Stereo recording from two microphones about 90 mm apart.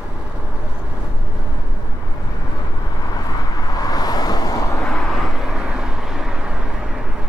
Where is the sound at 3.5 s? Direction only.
45° left (ahead or behind).